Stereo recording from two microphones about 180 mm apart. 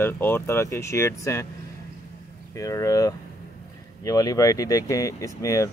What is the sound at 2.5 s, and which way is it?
Speech, 20° left (ahead or behind).